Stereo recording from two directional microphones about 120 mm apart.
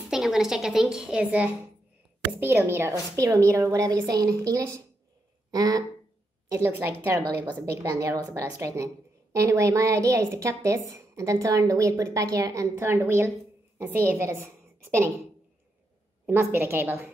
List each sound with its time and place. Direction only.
0.1 s a woman's voice: 5° right (ahead or behind); by 5.9 s 30° right (ahead or behind)
6.5 s a woman's voice: 20° right (ahead or behind)
16.3 s a woman's voice: 20° right (ahead or behind)